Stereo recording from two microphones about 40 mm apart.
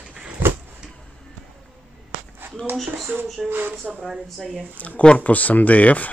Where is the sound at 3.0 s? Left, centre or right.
Right.